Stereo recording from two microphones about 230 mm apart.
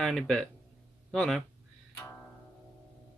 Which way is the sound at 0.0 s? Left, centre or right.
Centre.